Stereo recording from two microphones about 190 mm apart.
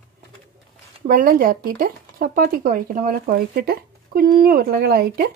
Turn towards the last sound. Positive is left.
turn(degrees=-55)  # may be behind; listen again after turning